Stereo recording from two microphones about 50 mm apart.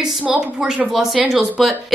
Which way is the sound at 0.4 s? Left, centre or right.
Centre.